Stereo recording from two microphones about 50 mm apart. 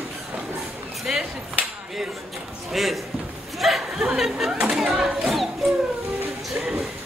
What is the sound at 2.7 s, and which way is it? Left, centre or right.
Speech, centre.